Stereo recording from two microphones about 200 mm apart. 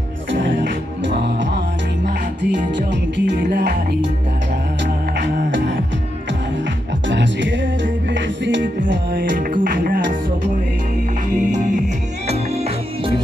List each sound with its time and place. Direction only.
1.0 s music: 65° right (ahead or behind)
5.2 s beatboxing: 60° right (ahead or behind)
7.1 s music: 65° right (ahead or behind)
9.5 s music: 45° right (ahead or behind)